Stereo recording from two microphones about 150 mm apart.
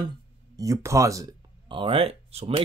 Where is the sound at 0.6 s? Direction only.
20° right (ahead or behind).